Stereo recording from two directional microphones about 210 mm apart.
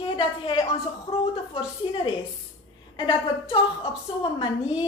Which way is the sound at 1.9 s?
25° left (ahead or behind).